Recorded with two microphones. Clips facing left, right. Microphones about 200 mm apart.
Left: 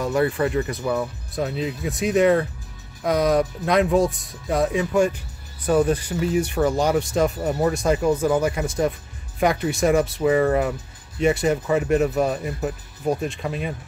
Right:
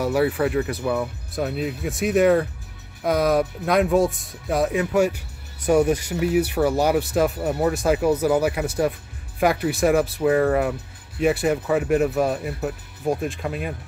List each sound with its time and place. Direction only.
0.0 s speech: 5° right (ahead or behind)